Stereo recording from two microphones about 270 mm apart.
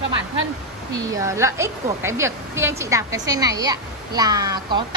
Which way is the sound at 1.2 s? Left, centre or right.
Centre.